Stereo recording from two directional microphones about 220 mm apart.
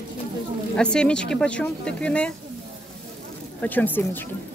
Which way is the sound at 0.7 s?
5° left (ahead or behind).